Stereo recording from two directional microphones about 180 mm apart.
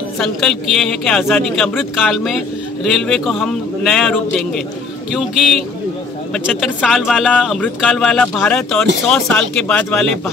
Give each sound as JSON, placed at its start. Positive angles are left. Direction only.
{"t": 0.2, "sound": "speech", "side_deg": 0}